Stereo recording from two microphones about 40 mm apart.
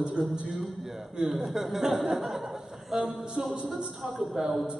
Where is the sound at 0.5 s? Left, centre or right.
Centre.